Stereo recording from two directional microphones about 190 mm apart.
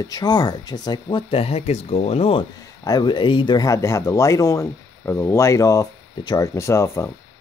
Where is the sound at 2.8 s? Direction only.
20° left (ahead or behind).